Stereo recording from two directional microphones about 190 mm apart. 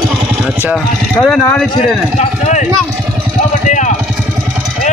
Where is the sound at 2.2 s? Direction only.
40° left (ahead or behind).